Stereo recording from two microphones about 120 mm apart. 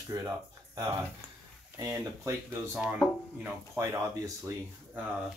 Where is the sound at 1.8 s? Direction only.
25° right (ahead or behind).